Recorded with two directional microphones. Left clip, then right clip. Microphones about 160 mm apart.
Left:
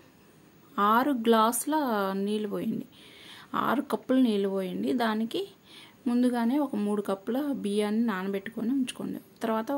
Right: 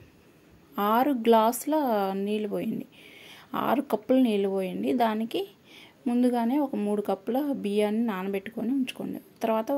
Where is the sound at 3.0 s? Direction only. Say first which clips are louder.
Right 2 dB; 40° left (ahead or behind).